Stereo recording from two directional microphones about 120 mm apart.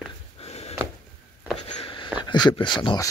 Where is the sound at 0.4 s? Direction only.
60° left (ahead or behind).